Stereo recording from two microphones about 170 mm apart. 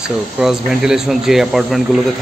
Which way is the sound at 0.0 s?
Centre (ahead or behind).